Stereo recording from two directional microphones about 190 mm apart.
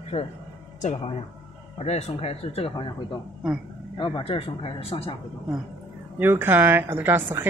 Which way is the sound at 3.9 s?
25° left (ahead or behind).